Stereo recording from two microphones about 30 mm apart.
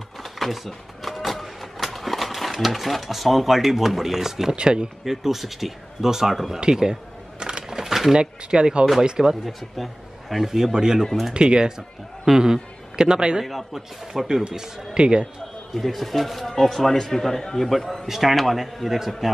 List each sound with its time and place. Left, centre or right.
0.2 s a sound: centre
4.6 s speech: right
5.0 s speech: centre
6.6 s a sound: right
7.8 s a sound: centre
8.2 s speech: right
10.3 s speech: centre
10.7 s a man's voice: right
13.5 s a man's voice: centre
15.0 s speech: right
15.7 s a man's voice: centre
18.0 s a man's voice: centre
18.3 s a man's voice: centre